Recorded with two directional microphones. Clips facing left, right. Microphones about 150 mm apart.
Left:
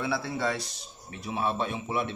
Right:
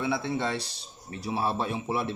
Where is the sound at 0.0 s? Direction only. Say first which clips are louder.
Right 1 dB; 20° right (ahead or behind).